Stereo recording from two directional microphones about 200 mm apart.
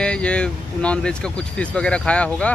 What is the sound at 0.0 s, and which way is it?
Speech, 5° left (ahead or behind).